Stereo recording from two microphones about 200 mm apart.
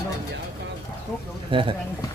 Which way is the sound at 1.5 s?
25° right (ahead or behind).